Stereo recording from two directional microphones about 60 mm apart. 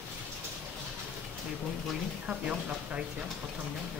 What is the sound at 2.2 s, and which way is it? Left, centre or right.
Speech, centre.